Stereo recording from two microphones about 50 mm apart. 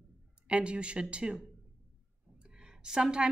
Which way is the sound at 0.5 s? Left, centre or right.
Right.